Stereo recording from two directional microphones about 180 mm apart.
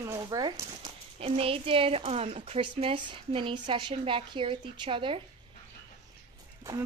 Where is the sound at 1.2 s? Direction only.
30° right (ahead or behind).